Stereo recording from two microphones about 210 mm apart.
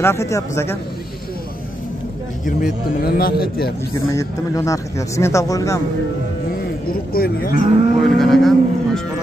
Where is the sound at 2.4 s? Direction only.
45° left (ahead or behind).